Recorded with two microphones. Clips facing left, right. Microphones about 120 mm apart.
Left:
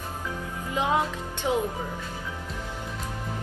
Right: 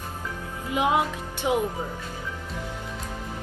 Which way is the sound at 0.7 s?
15° right (ahead or behind).